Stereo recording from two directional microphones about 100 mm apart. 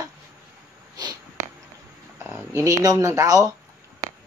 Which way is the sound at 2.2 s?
25° right (ahead or behind).